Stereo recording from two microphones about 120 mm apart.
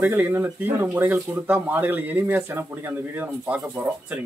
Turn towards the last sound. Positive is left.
turn(degrees=-15)  # may be behind; listen again after turning